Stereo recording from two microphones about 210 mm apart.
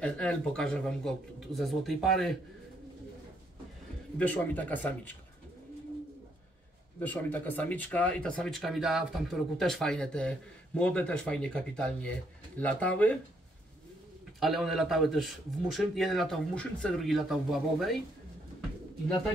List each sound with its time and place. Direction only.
0.0 s speech: 5° left (ahead or behind)
4.2 s speech: 10° left (ahead or behind)
7.0 s speech: 10° left (ahead or behind)
14.4 s speech: centre (ahead or behind)